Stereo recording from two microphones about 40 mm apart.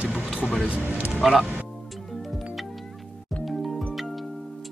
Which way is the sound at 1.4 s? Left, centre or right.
Right.